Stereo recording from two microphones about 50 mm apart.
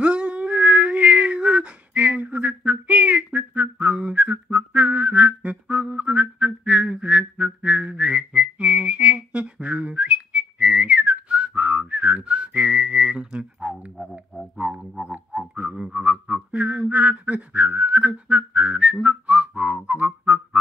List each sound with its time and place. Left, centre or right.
0.0 s a sound: right
15.0 s music: right
16.0 s whistling: right